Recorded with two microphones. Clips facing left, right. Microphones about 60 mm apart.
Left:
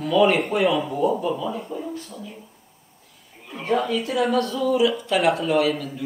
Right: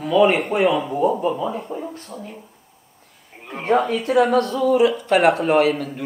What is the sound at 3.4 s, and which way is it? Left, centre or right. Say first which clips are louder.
Speech: right 4 dB; right.